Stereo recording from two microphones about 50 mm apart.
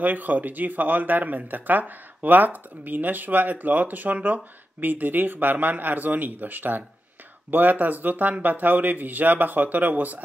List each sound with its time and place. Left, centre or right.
0.0 s speech: right